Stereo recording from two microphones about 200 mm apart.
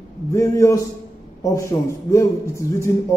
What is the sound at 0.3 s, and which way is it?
A man's voice, 15° left (ahead or behind).